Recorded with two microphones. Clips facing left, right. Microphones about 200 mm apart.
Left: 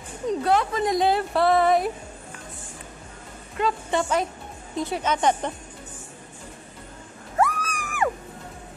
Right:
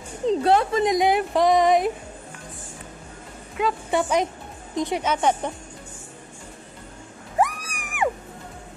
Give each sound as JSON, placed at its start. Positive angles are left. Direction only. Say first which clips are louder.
{"t": 0.3, "sound": "a woman's voice", "louder": "right 3 dB", "side_deg": -30}
{"t": 3.5, "sound": "a woman's voice", "louder": "right 1 dB", "side_deg": -10}
{"t": 7.3, "sound": "a sound", "louder": "even", "side_deg": -15}